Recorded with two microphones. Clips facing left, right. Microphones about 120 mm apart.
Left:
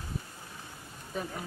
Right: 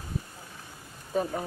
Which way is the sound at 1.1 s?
40° right (ahead or behind).